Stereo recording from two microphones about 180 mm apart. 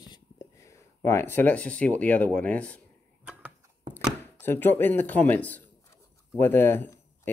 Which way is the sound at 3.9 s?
10° left (ahead or behind).